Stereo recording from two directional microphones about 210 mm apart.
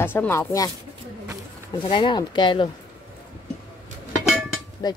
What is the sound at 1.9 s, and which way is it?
Speech, 20° left (ahead or behind).